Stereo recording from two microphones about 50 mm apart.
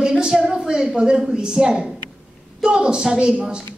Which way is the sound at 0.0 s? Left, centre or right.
Centre.